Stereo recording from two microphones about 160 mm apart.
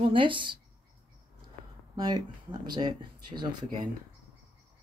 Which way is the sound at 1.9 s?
25° right (ahead or behind).